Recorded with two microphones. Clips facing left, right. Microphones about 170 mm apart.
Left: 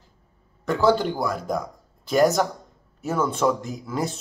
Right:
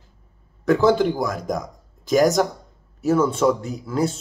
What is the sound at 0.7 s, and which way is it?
Speech, 5° right (ahead or behind).